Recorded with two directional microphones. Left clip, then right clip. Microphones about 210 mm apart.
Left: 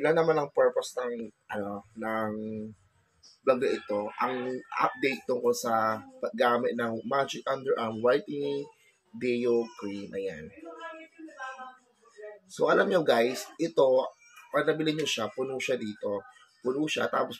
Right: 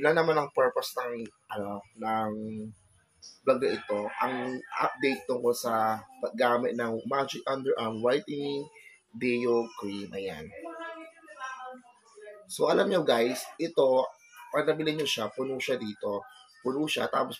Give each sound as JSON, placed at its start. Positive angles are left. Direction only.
{"t": 0.0, "sound": "speech", "side_deg": 0}
{"t": 3.4, "sound": "speech", "side_deg": 5}
{"t": 12.5, "sound": "speech", "side_deg": -10}